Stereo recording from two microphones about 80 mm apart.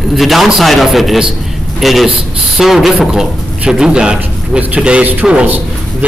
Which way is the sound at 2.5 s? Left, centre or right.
Centre.